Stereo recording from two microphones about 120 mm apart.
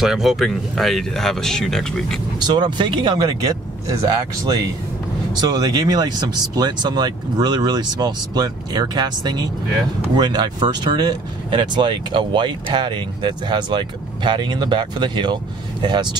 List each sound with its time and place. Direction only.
0.0 s speech: centre (ahead or behind)
2.4 s speech: 40° right (ahead or behind)
5.4 s speech: 35° right (ahead or behind)